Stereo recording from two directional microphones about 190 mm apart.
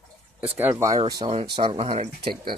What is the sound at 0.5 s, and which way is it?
Speech, 10° right (ahead or behind).